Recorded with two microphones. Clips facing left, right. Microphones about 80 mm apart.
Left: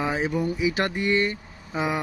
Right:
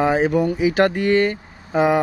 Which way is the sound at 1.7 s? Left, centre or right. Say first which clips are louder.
Right 10 dB; right.